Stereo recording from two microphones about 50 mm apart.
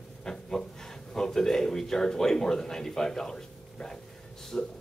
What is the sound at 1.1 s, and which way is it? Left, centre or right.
Speech, centre.